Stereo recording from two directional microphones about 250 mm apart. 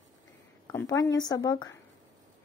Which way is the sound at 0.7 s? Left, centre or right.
Centre.